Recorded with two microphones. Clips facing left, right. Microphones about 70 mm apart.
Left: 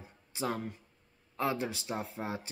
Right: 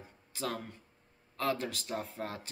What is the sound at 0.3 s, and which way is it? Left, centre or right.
Speech, centre.